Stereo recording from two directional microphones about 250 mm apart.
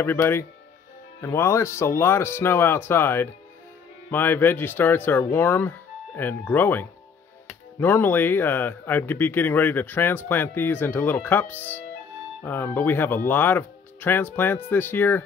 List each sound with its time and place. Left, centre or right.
0.0 s speech: centre